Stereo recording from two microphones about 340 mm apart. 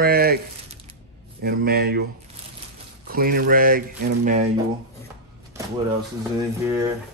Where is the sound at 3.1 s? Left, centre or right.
Right.